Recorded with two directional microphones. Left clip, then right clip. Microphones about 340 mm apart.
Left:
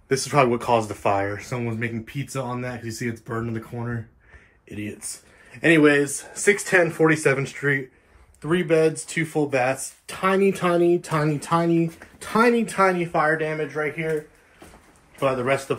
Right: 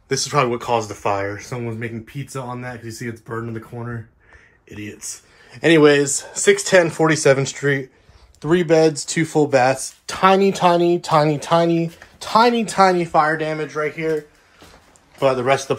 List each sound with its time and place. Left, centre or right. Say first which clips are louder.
0.1 s speech: right 1 dB; centre
5.5 s speech: right 4 dB; centre
15.1 s speech: right 5 dB; centre